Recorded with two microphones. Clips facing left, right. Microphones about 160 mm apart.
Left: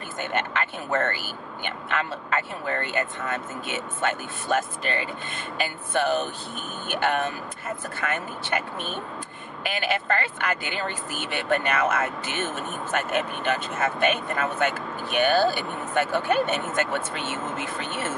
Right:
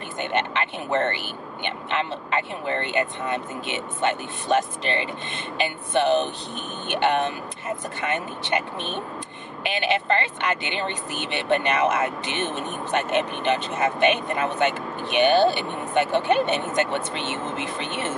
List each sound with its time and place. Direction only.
0.2 s speech: 20° right (ahead or behind)